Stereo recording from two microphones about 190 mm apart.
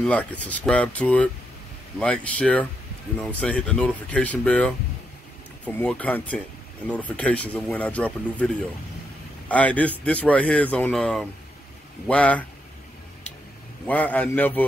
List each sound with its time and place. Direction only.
0.0 s speech: 5° left (ahead or behind)
9.5 s speech: 10° left (ahead or behind)
13.8 s speech: 10° left (ahead or behind)